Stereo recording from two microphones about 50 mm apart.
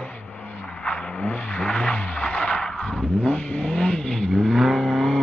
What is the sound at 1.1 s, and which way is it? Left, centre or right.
Vehicle, left.